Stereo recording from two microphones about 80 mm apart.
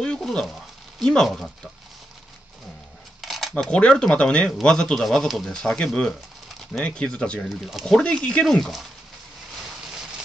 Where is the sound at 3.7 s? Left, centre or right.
Centre.